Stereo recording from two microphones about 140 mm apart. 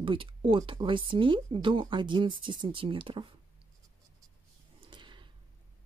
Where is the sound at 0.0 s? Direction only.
40° right (ahead or behind).